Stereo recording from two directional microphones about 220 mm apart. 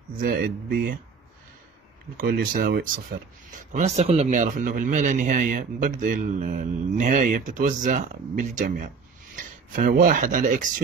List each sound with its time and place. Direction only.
0.2 s speech: 40° right (ahead or behind)
2.1 s speech: 40° right (ahead or behind)